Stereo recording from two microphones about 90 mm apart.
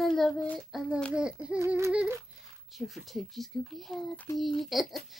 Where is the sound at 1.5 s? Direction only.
30° right (ahead or behind).